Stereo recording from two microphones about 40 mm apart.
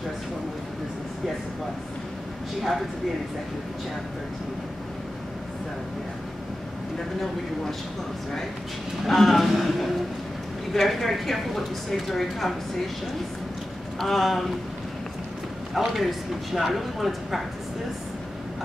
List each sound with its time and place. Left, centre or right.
9.0 s a woman's voice: centre
13.9 s a woman's voice: centre
15.7 s a woman's voice: centre